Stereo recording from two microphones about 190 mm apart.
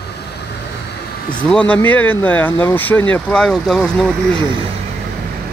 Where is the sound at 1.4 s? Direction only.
5° left (ahead or behind).